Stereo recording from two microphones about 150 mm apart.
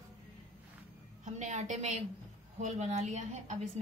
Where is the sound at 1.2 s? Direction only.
50° right (ahead or behind).